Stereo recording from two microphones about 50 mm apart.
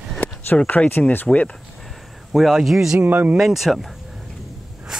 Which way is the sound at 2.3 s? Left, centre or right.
Centre.